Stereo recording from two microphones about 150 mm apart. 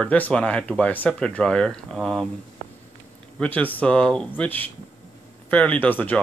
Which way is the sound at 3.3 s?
10° left (ahead or behind).